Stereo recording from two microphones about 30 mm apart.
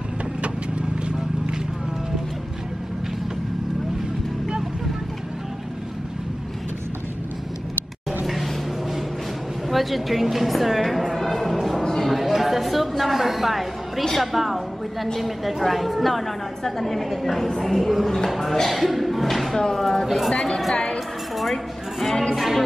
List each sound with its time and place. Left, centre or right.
0.4 s vehicle: right
9.7 s a woman's voice: centre
11.0 s music: centre
11.5 s a sound: centre
14.2 s a woman's voice: centre
20.7 s speech: left
22.3 s a woman's voice: centre